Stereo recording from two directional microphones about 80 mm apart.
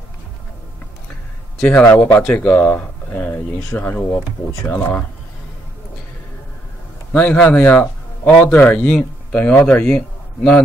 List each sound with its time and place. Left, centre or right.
1.6 s speech: centre
7.1 s a man's voice: centre